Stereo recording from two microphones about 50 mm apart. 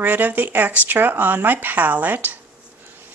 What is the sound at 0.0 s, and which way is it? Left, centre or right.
Speech, right.